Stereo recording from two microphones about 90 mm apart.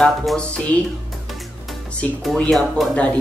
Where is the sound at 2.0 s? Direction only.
15° left (ahead or behind).